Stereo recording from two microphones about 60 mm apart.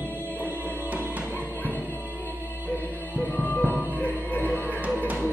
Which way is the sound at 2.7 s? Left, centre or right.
Left.